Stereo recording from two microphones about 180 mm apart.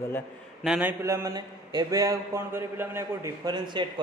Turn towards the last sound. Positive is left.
turn(degrees=-25)  # may be behind; listen again after turning